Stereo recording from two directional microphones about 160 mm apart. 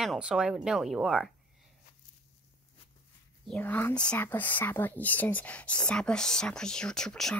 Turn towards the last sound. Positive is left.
turn(degrees=5)  # may be behind; listen again after turning